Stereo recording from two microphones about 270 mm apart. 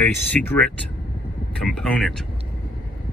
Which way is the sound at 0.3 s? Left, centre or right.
Centre.